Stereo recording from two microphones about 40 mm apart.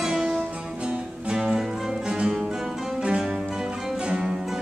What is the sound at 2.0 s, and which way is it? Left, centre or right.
Guitar, right.